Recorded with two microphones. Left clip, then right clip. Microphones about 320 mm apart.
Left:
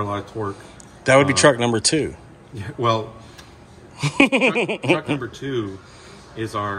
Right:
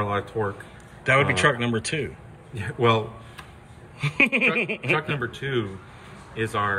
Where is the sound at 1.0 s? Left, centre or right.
Centre.